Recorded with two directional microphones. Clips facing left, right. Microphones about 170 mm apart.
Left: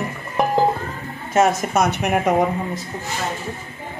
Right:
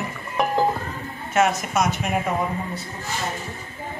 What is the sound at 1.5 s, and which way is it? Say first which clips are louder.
Speech: left 3 dB; 60° left (ahead or behind).